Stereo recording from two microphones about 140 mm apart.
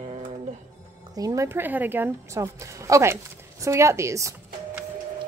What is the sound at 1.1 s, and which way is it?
A woman's voice, 25° right (ahead or behind).